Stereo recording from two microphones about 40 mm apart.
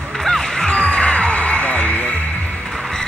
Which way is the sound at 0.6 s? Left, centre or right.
Left.